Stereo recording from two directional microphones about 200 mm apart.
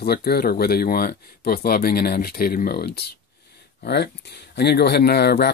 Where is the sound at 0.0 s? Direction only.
50° left (ahead or behind).